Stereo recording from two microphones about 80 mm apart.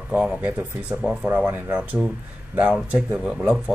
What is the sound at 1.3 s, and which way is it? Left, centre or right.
Speech, centre.